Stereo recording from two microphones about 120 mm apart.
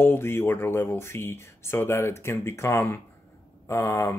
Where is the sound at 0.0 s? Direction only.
20° left (ahead or behind).